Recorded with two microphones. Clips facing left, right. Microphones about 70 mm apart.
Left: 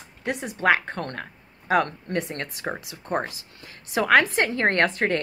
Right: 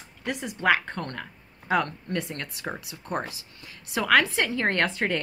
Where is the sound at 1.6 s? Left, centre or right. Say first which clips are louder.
Left 3 dB; left.